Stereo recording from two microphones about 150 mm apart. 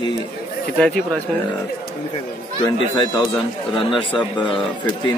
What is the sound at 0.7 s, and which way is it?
Speech, 5° left (ahead or behind).